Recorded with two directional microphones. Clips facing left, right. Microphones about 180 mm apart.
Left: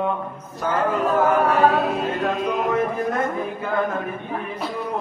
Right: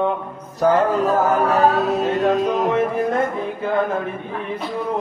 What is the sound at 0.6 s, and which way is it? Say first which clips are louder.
Chant: right 6 dB; 40° right (ahead or behind).